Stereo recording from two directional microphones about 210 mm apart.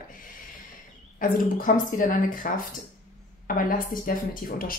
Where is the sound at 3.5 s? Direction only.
40° left (ahead or behind).